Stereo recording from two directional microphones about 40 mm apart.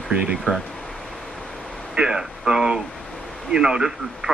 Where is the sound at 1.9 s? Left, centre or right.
Centre.